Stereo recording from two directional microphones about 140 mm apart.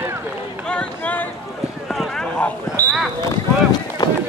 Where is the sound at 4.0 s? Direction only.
25° left (ahead or behind).